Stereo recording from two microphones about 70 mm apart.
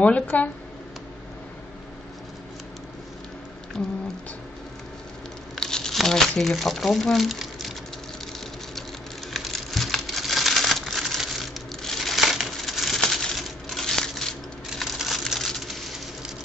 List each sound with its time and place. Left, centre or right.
0.0 s speech: centre
5.6 s speech: centre
9.3 s crumpling: centre
14.7 s a sound: centre